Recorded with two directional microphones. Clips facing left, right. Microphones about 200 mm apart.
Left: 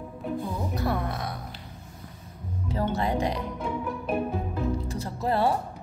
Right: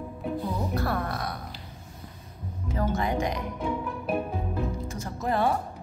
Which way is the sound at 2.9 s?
35° left (ahead or behind).